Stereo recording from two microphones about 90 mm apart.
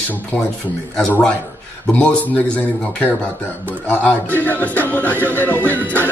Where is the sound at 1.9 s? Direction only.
15° left (ahead or behind).